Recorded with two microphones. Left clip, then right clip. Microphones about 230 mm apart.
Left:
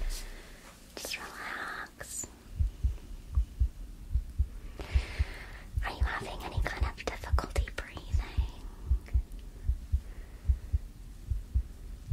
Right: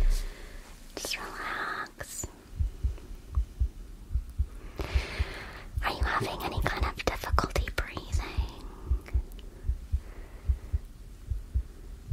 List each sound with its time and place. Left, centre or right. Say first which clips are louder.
0.9 s whispering: right 4 dB; right
4.7 s whispering: right 5 dB; right